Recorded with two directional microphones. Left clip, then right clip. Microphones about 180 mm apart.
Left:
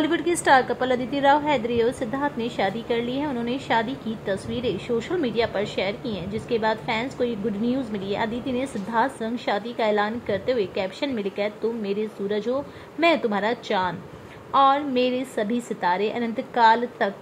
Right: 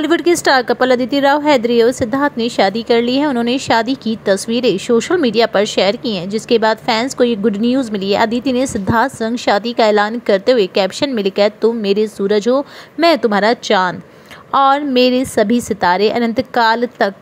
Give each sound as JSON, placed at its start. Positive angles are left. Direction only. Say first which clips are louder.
{"t": 0.0, "sound": "a woman's voice", "louder": "right 9 dB", "side_deg": -30}